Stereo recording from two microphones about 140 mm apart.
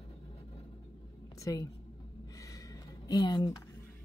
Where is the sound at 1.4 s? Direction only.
25° left (ahead or behind).